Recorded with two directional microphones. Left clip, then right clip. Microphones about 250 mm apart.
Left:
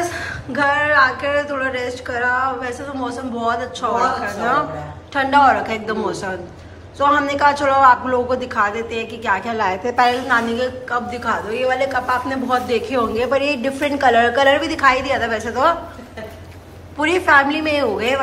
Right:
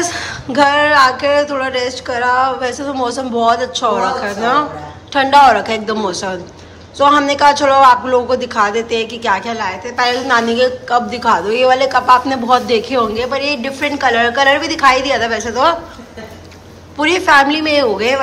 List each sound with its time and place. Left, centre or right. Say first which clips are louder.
0.0 s a man's voice: right 4 dB; centre
16.9 s a man's voice: right 3 dB; centre